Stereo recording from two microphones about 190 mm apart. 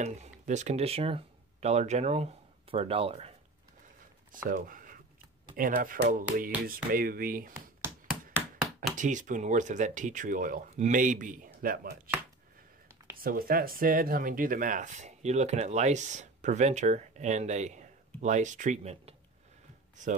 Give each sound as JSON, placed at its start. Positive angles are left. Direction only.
{"t": 0.0, "sound": "speech", "side_deg": -35}
{"t": 4.3, "sound": "speech", "side_deg": -45}
{"t": 7.8, "sound": "a sound", "side_deg": -10}
{"t": 8.9, "sound": "speech", "side_deg": -40}
{"t": 13.2, "sound": "speech", "side_deg": -50}